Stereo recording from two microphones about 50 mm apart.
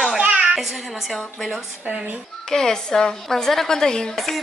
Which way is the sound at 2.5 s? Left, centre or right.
Centre.